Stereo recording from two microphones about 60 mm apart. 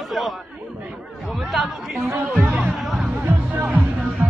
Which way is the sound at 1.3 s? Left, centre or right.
Centre.